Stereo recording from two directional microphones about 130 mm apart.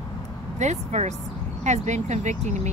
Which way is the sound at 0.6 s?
60° right (ahead or behind).